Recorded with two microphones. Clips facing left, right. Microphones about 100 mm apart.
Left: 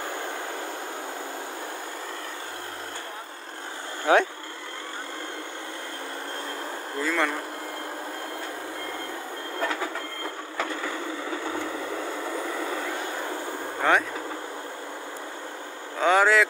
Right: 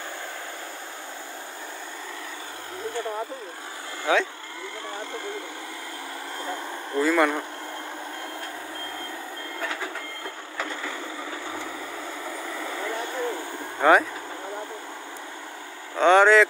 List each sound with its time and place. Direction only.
4.0 s speech: 50° left (ahead or behind)
7.0 s speech: 5° right (ahead or behind)
13.8 s speech: 5° right (ahead or behind)
16.0 s vehicle: 5° left (ahead or behind)